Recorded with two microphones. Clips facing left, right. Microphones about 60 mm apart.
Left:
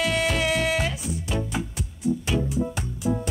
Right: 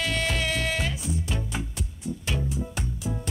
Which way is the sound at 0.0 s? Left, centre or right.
Centre.